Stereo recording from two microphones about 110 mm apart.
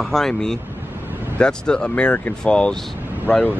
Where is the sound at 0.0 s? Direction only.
5° left (ahead or behind).